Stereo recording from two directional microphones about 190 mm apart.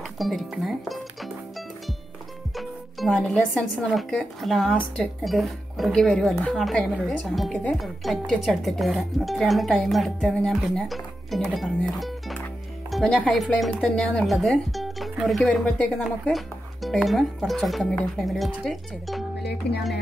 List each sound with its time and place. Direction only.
0.2 s speech: centre (ahead or behind)
2.5 s speech: centre (ahead or behind)
19.6 s speech: 60° left (ahead or behind)